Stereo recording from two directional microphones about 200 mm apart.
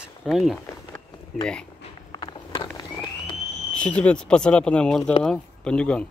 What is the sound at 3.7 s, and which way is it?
Speech, 5° left (ahead or behind).